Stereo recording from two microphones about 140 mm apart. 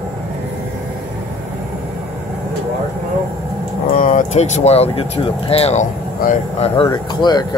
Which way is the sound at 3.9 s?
70° left (ahead or behind).